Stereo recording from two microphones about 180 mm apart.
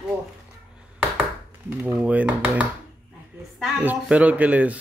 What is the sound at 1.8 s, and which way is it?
Speech, 10° right (ahead or behind).